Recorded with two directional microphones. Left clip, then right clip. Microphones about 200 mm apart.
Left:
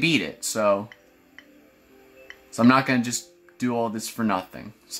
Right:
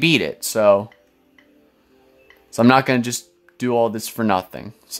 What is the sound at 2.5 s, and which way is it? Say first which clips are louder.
Speech: right 5 dB; 40° right (ahead or behind).